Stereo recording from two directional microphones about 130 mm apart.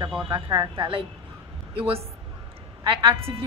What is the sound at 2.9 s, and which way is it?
Speech, 45° right (ahead or behind).